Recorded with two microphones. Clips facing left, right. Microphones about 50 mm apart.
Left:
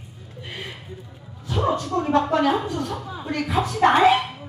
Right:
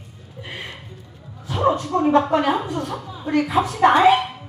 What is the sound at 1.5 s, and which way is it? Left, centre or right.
A woman's voice, centre.